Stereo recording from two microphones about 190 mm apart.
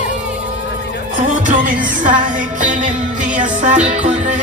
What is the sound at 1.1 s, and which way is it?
Music, 45° right (ahead or behind).